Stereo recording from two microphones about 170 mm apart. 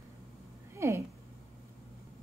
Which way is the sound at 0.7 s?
15° right (ahead or behind).